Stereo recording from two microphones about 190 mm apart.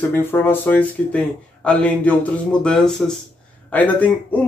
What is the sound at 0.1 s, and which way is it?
A man's voice, 10° left (ahead or behind).